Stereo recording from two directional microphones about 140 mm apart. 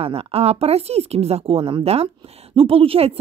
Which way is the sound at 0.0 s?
45° right (ahead or behind).